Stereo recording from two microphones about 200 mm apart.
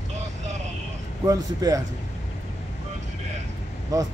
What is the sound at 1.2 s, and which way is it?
Speech, 15° right (ahead or behind).